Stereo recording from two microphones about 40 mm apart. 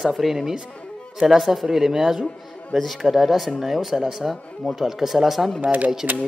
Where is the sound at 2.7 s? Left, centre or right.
Centre.